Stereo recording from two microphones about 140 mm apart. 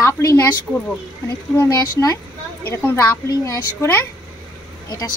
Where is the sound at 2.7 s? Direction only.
15° left (ahead or behind).